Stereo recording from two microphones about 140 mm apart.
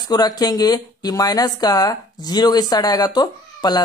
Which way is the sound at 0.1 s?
30° left (ahead or behind).